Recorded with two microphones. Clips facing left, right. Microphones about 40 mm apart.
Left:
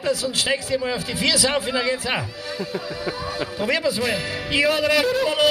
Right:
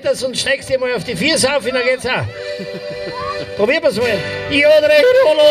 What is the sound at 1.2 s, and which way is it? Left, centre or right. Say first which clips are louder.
Speech: right 6 dB; right.